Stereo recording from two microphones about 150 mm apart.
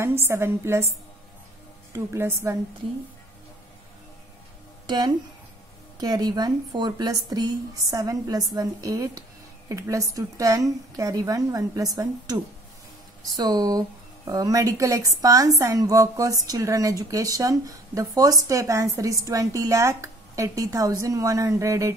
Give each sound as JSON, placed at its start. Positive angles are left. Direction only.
{"t": 0.3, "sound": "speech", "side_deg": -15}
{"t": 1.9, "sound": "speech", "side_deg": -15}
{"t": 4.8, "sound": "speech", "side_deg": -30}
{"t": 13.4, "sound": "speech", "side_deg": -25}